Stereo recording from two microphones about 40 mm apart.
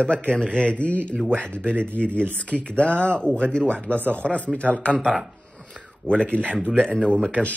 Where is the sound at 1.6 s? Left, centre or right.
Left.